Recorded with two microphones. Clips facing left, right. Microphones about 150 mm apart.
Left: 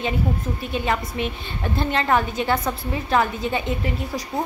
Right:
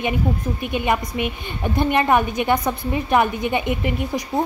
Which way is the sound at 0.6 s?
15° right (ahead or behind).